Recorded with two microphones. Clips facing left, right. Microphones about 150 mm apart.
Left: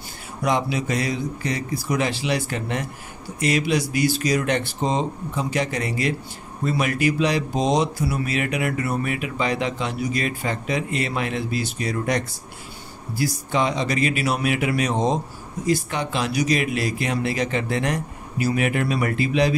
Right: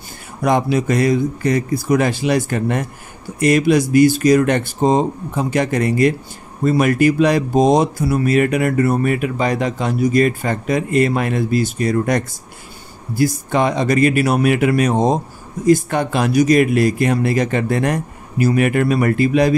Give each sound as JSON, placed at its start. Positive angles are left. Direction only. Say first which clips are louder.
{"t": 0.4, "sound": "speech", "louder": "right 6 dB", "side_deg": -50}